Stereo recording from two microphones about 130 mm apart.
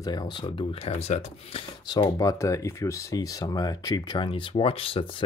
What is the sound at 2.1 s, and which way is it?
Speech, 25° left (ahead or behind).